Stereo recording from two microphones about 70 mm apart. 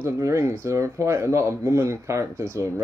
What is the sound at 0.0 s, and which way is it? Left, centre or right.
Speech, right.